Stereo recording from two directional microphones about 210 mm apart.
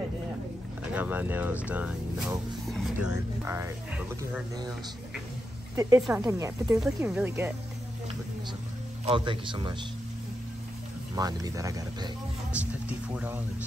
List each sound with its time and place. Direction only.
0.9 s speech: 10° right (ahead or behind)
5.8 s speech: 15° right (ahead or behind)
6.8 s speech: 5° right (ahead or behind)
9.0 s a man's voice: 25° right (ahead or behind)
11.1 s speech: 20° right (ahead or behind)